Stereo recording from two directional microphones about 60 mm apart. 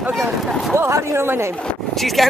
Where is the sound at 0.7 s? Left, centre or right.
Right.